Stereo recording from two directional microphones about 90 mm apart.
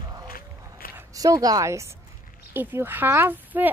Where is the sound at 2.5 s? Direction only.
25° right (ahead or behind).